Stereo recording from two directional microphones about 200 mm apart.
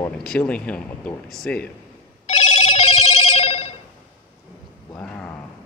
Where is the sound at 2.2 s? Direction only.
35° left (ahead or behind).